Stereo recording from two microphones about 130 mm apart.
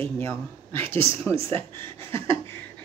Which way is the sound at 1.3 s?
45° right (ahead or behind).